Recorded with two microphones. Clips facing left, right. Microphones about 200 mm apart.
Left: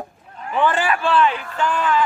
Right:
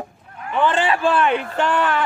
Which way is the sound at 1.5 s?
65° right (ahead or behind).